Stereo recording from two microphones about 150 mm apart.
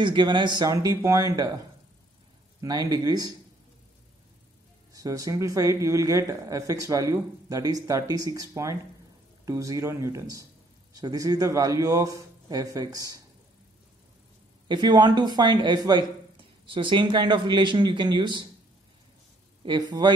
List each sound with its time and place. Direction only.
0.0 s speech: 30° right (ahead or behind)
2.9 s speech: 25° right (ahead or behind)
4.9 s speech: 25° right (ahead or behind)
14.7 s speech: 30° right (ahead or behind)
19.6 s speech: 30° right (ahead or behind)